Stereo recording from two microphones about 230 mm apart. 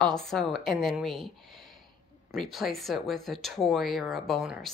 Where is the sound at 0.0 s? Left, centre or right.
Centre.